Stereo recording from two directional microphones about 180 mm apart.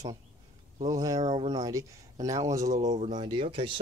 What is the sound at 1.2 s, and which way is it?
Speech, 35° right (ahead or behind).